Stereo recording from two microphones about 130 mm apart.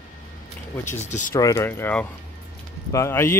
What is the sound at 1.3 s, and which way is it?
Speech, 20° left (ahead or behind).